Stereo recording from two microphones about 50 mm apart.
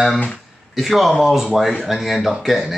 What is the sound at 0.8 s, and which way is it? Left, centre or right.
Speech, centre.